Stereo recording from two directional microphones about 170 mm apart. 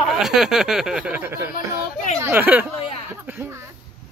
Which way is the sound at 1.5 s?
45° left (ahead or behind).